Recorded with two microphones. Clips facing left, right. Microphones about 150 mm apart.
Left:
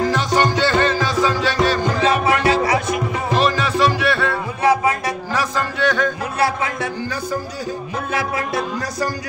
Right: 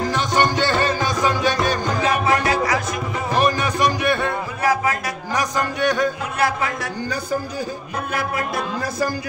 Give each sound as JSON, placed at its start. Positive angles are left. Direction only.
{"t": 0.1, "sound": "music", "side_deg": -15}
{"t": 2.0, "sound": "music", "side_deg": 25}
{"t": 3.3, "sound": "music", "side_deg": -15}
{"t": 4.6, "sound": "music", "side_deg": 25}
{"t": 5.3, "sound": "music", "side_deg": -15}